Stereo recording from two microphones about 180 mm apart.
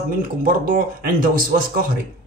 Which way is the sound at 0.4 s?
50° right (ahead or behind).